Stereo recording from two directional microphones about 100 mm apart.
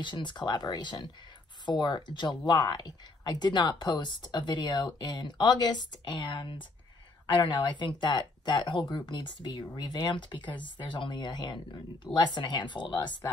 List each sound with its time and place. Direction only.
0.0 s speech: 50° left (ahead or behind)